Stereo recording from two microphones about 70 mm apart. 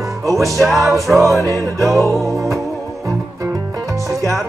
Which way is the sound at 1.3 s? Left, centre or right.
Left.